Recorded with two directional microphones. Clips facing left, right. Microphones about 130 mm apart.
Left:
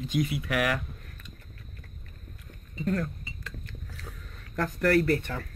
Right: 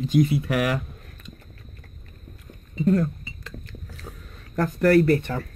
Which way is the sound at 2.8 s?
25° right (ahead or behind).